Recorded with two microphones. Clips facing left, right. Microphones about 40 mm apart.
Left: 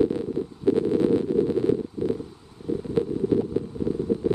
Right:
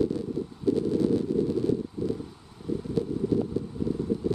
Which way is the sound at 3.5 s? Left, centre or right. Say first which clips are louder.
Left 3 dB; left.